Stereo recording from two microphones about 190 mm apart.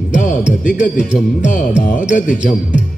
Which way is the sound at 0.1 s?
45° left (ahead or behind).